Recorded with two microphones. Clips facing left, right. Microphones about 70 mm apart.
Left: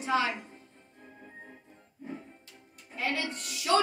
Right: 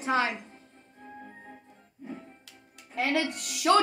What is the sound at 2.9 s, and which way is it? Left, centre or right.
Speech, right.